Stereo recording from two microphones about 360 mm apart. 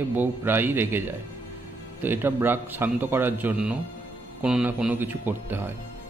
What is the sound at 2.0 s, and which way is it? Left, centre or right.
Speech, centre.